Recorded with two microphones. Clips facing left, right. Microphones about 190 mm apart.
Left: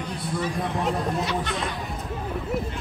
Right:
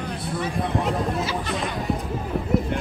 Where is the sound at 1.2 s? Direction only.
Centre (ahead or behind).